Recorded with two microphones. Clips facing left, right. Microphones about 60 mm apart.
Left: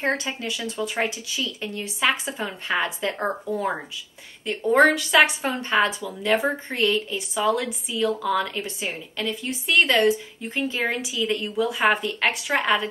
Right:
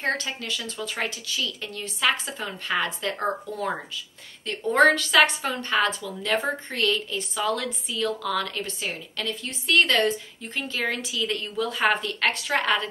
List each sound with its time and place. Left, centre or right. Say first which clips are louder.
0.0 s a woman's voice: left 2 dB; centre